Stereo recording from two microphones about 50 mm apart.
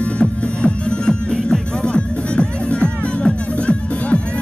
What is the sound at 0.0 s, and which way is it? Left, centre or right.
Music, left.